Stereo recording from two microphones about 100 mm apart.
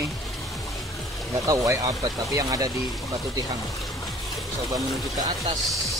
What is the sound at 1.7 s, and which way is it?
Speech, 35° right (ahead or behind).